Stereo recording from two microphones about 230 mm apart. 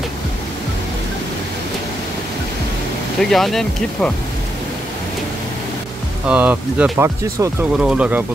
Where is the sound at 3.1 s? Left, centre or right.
Centre.